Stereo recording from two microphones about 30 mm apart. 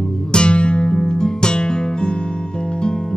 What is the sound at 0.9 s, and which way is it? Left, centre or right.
Music, left.